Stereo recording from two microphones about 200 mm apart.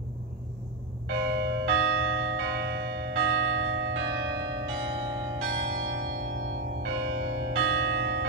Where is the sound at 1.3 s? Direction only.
80° right.